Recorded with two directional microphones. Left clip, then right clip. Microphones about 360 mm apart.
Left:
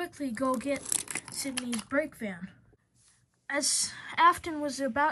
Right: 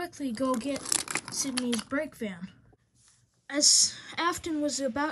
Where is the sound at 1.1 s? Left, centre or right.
Right.